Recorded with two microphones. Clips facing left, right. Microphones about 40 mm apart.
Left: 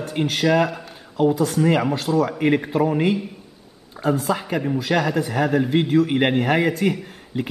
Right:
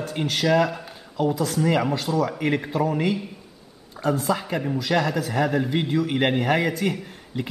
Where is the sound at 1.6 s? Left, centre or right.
Centre.